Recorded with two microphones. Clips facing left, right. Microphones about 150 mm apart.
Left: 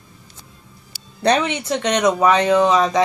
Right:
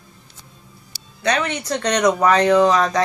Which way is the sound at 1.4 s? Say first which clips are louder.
Left 2 dB; 10° left (ahead or behind).